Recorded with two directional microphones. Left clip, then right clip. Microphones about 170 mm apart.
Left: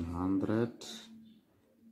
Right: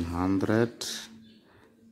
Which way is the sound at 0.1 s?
20° right (ahead or behind).